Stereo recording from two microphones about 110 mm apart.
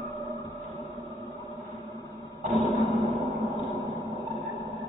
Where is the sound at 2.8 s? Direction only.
Centre (ahead or behind).